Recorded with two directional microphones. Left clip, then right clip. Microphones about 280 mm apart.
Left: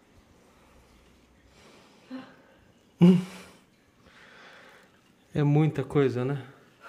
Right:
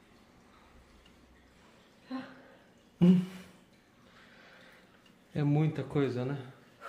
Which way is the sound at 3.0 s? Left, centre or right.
Left.